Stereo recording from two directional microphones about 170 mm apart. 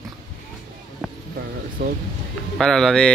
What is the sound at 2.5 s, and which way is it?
Speech, centre (ahead or behind).